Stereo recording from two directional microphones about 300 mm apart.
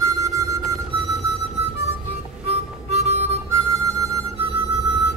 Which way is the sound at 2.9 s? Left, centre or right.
Right.